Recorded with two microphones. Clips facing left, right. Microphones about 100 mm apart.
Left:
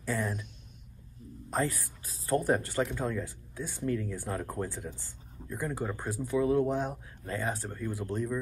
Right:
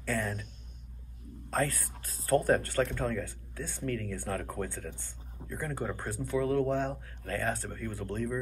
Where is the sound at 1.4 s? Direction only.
15° left (ahead or behind).